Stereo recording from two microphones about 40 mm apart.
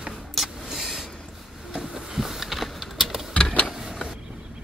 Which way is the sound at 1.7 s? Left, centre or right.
Centre.